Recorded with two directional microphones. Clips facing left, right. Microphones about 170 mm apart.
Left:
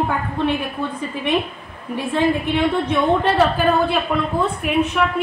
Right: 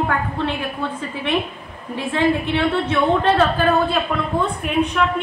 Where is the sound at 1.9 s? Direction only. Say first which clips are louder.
Even; 15° left (ahead or behind).